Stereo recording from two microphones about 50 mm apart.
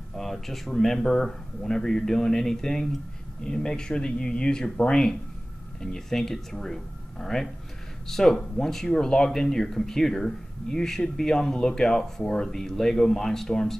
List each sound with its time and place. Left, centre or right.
0.1 s speech: centre
5.8 s speech: centre